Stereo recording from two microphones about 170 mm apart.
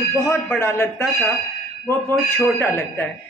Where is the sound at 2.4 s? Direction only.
10° left (ahead or behind).